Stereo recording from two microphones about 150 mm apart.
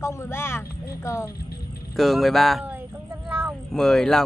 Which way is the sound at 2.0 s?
Centre (ahead or behind).